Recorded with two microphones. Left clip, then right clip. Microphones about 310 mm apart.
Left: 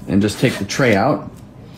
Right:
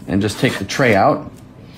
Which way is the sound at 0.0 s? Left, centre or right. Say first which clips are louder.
Left 1 dB; right.